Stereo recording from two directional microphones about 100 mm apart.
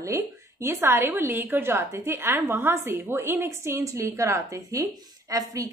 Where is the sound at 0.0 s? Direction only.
25° right (ahead or behind).